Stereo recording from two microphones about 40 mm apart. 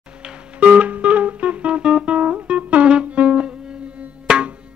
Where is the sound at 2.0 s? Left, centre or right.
Right.